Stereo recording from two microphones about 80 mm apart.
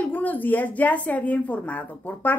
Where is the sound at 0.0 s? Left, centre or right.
Centre.